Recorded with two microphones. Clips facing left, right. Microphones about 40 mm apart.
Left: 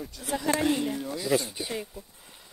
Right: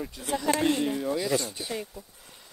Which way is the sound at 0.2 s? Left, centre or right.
Centre.